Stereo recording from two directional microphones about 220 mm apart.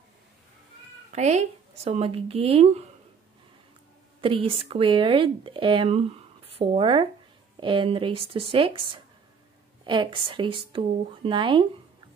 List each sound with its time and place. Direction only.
1.1 s speech: 30° right (ahead or behind)
4.2 s speech: 25° right (ahead or behind)